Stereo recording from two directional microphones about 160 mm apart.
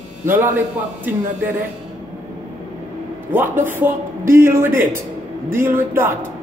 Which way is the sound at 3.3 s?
15° right (ahead or behind).